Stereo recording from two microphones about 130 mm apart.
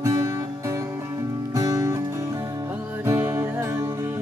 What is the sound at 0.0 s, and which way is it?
Music, 25° right (ahead or behind).